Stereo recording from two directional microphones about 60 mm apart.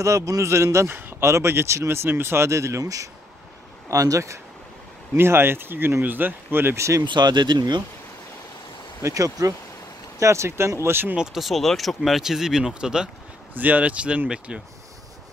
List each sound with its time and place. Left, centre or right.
0.0 s speech: right
0.5 s speech: right
0.8 s speech: right
2.4 s speech: right
2.8 s speech: right
5.1 s speech: right
7.2 s speech: right
9.0 s speech: right
10.1 s speech: right
11.1 s speech: centre
13.6 s speech: right